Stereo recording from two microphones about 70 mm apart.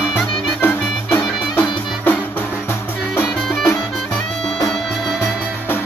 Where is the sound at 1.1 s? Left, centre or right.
Centre.